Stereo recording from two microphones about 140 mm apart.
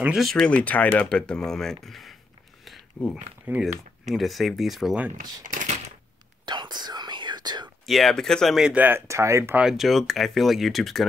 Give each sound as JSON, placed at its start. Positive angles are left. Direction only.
{"t": 0.0, "sound": "speech", "side_deg": 0}
{"t": 3.5, "sound": "speech", "side_deg": -10}
{"t": 5.4, "sound": "typewriter", "side_deg": -65}
{"t": 6.4, "sound": "whispering", "side_deg": -30}
{"t": 7.8, "sound": "speech", "side_deg": 0}
{"t": 9.7, "sound": "speech", "side_deg": 0}